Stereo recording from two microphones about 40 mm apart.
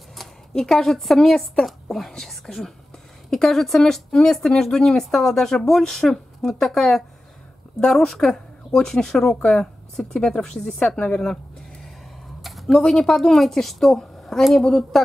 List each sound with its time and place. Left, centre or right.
0.1 s a woman's voice: centre
12.4 s a sound: centre
12.8 s speech: centre